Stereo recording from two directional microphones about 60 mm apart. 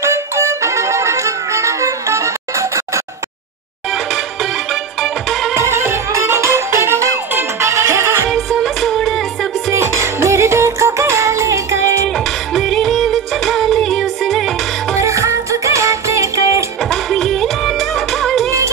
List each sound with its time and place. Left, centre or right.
0.0 s music: right
5.0 s music: centre
5.5 s music: right
8.3 s music: centre
9.8 s music: right
12.5 s music: centre
15.0 s music: right
16.9 s music: centre